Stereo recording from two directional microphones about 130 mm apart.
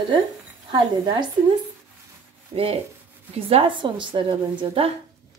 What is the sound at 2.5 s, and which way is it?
A woman's voice, 50° right (ahead or behind).